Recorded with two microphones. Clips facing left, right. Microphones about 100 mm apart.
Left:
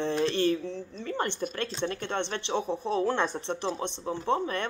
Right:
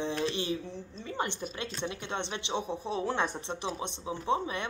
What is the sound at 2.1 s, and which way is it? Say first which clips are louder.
Speech: left 2 dB; 15° right (ahead or behind).